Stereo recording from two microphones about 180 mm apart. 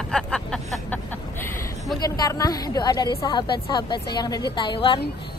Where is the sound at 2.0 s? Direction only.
20° left (ahead or behind).